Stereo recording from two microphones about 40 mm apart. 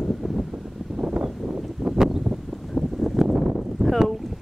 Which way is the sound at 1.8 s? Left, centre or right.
Centre.